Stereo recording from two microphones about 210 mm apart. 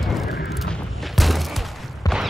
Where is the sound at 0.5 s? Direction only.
Centre (ahead or behind).